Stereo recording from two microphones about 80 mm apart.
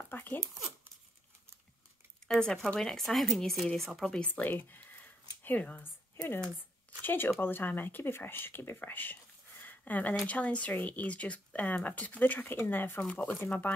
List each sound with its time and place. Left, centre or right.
0.0 s a sound: left
2.2 s speech: centre
4.2 s speech: left